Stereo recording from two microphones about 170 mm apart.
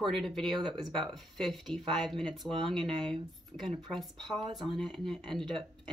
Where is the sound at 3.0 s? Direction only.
30° right (ahead or behind).